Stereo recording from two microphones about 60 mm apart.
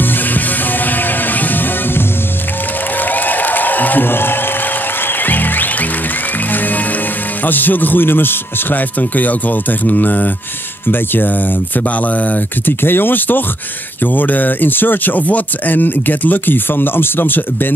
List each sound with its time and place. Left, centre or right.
0.8 s music: left
7.4 s speech: left